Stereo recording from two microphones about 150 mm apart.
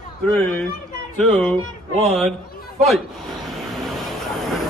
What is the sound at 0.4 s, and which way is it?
Speech, 5° left (ahead or behind).